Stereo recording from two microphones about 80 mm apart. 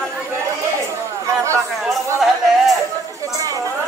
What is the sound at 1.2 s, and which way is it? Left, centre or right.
Chatter, right.